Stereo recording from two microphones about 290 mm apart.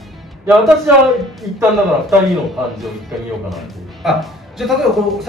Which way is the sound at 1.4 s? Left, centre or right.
Centre.